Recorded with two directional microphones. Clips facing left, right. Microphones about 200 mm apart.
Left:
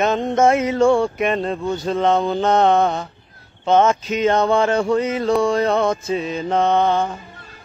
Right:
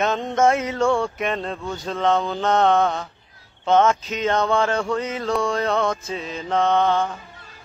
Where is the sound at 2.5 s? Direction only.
5° left (ahead or behind).